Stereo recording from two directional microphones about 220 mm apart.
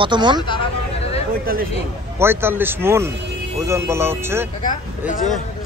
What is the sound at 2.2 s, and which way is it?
A man's voice, 10° right (ahead or behind).